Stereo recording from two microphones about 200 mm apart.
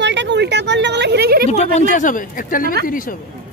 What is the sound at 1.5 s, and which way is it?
A woman's voice, 35° left (ahead or behind).